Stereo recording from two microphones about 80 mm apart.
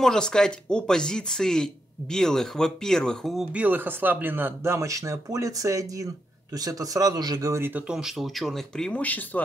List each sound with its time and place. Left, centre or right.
0.0 s speech: centre
3.5 s speech: right
7.9 s speech: centre
9.0 s speech: left